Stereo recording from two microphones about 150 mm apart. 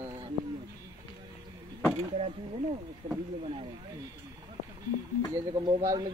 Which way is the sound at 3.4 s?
35° right (ahead or behind).